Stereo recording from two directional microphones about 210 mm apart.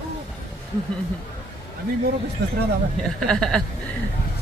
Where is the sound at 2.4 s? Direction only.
50° right (ahead or behind).